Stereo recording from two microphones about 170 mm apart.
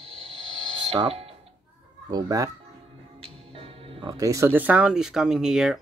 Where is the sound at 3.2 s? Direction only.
35° right (ahead or behind).